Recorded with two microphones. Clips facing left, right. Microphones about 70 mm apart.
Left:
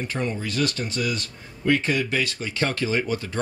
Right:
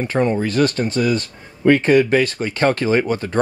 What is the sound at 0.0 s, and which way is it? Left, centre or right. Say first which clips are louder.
Speech: right 10 dB; right.